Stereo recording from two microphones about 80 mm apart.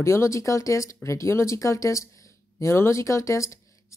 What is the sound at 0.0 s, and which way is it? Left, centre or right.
A woman's voice, left.